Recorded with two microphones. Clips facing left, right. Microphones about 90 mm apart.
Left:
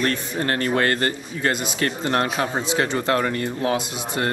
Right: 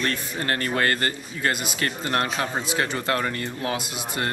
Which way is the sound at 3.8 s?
10° right (ahead or behind).